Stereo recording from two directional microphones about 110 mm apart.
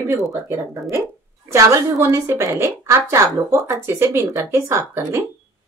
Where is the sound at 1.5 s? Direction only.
30° right (ahead or behind).